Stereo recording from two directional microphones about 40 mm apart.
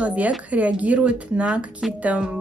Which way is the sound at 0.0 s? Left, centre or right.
Right.